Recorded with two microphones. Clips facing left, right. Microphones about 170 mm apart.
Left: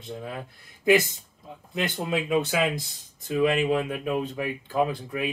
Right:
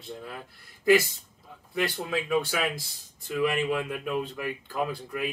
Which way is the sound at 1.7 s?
20° left (ahead or behind).